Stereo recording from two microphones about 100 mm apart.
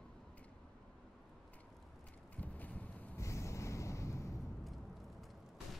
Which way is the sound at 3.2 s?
30° left (ahead or behind).